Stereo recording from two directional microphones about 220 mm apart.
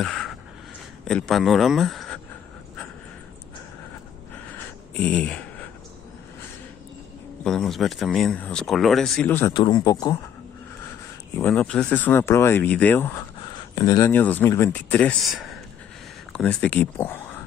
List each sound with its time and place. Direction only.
0.0 s a sound: 5° left (ahead or behind)
1.0 s speech: 5° left (ahead or behind)
4.5 s a sound: 5° left (ahead or behind)
7.4 s speech: centre (ahead or behind)
9.5 s a man's voice: 20° left (ahead or behind)
11.3 s speech: 5° left (ahead or behind)